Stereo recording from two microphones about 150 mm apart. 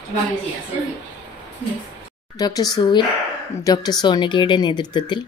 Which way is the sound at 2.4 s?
25° left (ahead or behind).